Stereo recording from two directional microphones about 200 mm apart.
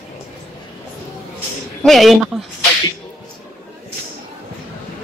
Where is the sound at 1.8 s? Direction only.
Centre (ahead or behind).